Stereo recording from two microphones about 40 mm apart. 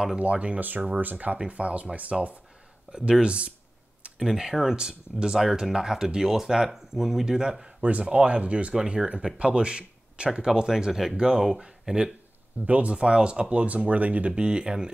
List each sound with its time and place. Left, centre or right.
0.2 s speech: right
0.6 s speech: right
1.4 s speech: right
2.9 s speech: right
4.2 s speech: centre
8.0 s speech: right
10.4 s speech: centre
10.9 s speech: centre
11.1 s speech: centre
12.6 s speech: right
12.9 s speech: right
14.3 s speech: right